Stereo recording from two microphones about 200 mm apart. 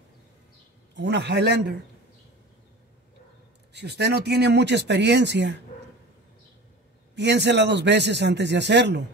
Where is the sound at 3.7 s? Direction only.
55° right (ahead or behind).